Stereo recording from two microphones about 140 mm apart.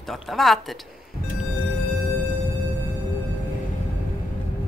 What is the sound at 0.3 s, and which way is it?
Speech, centre (ahead or behind).